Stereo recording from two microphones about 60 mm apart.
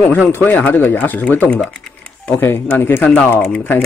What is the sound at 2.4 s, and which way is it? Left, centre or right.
Speech, left.